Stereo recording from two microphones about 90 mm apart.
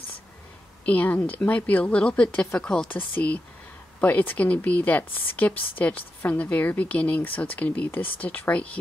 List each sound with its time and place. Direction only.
0.8 s speech: 15° left (ahead or behind)